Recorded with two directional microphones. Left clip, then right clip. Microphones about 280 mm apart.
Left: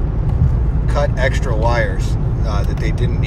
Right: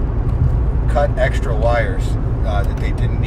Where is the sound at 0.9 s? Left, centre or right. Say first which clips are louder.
Right 1 dB; left.